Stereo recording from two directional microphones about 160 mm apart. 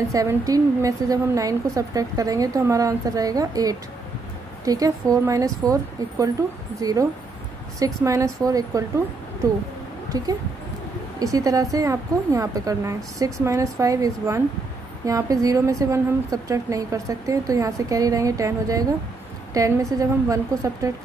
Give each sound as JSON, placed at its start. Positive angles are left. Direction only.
{"t": 0.1, "sound": "a woman's voice", "side_deg": -20}
{"t": 10.0, "sound": "a sound", "side_deg": -25}
{"t": 11.1, "sound": "a woman's voice", "side_deg": -20}